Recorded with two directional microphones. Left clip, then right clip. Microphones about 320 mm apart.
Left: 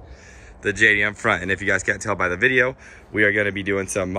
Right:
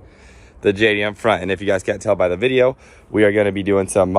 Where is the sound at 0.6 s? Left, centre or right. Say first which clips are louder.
Right 1 dB; centre.